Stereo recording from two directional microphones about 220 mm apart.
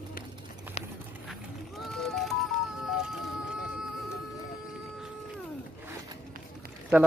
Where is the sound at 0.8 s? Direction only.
30° left (ahead or behind).